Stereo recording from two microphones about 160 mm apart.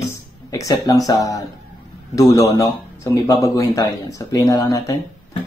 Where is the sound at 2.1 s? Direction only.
20° left (ahead or behind).